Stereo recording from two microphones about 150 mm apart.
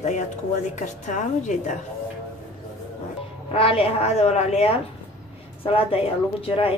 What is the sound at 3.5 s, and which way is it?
A woman's voice, 40° left (ahead or behind).